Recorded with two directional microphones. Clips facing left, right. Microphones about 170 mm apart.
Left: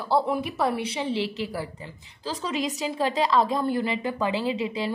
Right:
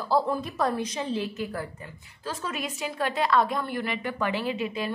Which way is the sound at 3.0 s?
30° left (ahead or behind).